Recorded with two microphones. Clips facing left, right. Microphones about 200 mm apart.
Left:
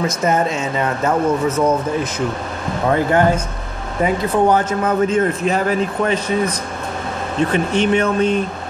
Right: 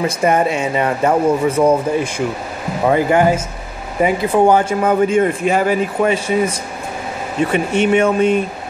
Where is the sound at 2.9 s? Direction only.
10° right (ahead or behind).